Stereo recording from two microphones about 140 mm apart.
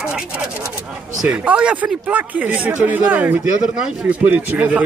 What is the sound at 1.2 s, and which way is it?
Speech, 10° right (ahead or behind).